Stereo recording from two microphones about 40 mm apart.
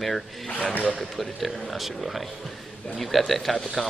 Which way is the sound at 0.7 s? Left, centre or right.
Left.